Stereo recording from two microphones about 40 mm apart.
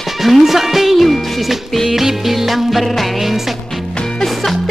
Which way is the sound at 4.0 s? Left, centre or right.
Centre.